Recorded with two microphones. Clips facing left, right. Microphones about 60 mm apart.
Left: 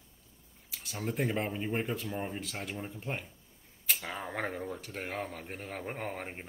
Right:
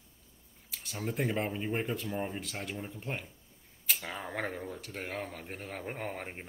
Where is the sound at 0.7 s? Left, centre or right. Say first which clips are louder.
Left 1 dB; centre.